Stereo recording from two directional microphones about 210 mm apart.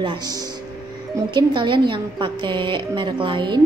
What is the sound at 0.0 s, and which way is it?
A woman's voice, 20° right (ahead or behind).